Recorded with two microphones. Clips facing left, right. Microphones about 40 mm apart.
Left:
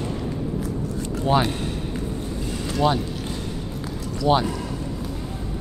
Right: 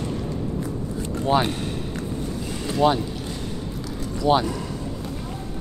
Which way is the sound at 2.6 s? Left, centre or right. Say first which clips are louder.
Right 2 dB; centre.